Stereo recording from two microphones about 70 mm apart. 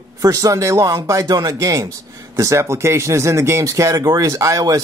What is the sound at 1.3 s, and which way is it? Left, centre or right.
Speech, right.